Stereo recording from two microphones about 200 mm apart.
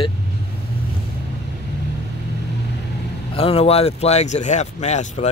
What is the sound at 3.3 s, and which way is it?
Speech, 30° left (ahead or behind).